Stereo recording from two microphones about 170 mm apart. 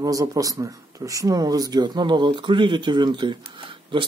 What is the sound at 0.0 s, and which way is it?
Speech, 20° right (ahead or behind).